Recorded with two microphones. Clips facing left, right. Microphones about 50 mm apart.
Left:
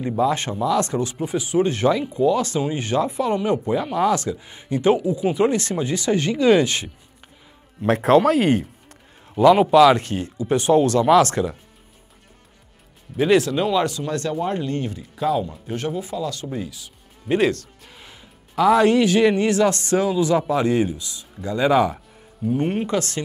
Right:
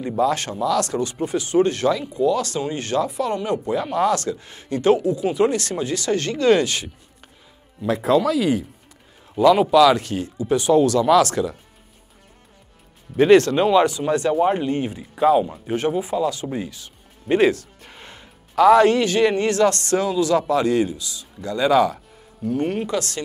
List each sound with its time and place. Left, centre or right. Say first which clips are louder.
0.2 s speech: right 1 dB; left
1.3 s speech: right 2 dB; centre
3.8 s speech: even; centre
7.8 s speech: left 3 dB; left
9.5 s speech: left 1 dB; left
13.1 s speech: right 4 dB; centre
17.3 s music: right 2 dB; centre
18.5 s speech: right 2 dB; centre
22.8 s speech: left 1 dB; left